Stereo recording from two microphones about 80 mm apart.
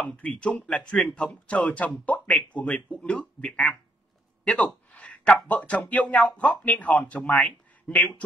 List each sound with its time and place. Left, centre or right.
0.3 s a man's voice: centre